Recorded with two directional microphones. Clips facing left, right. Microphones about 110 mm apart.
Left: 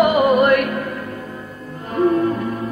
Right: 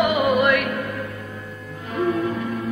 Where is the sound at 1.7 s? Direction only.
40° left (ahead or behind).